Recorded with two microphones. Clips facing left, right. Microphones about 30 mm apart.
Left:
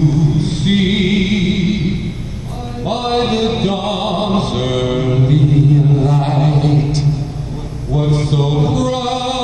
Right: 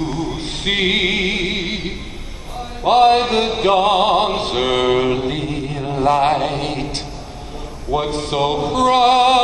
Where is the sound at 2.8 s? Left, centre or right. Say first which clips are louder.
Right 5 dB; right.